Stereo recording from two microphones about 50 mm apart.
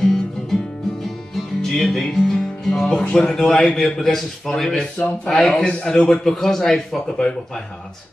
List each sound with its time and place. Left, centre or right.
0.0 s music: centre
3.0 s speech: centre
4.9 s speech: left
5.3 s speech: centre
6.2 s speech: centre